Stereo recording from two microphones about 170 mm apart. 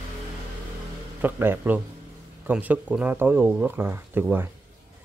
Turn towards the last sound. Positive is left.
turn(degrees=-10)  # may be behind; listen again after turning